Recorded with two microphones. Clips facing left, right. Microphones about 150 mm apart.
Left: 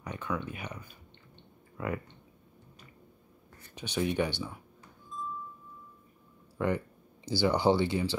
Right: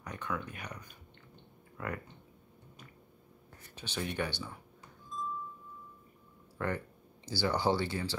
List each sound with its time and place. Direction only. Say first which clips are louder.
0.0 s speech: left 3 dB; 10° left (ahead or behind)
3.7 s speech: left 7 dB; 15° left (ahead or behind)
6.6 s speech: left 5 dB; 15° left (ahead or behind)